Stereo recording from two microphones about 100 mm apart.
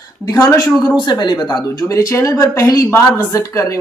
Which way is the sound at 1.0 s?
45° left (ahead or behind).